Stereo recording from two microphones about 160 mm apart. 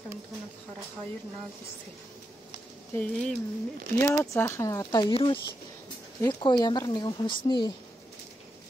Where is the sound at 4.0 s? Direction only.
15° left (ahead or behind).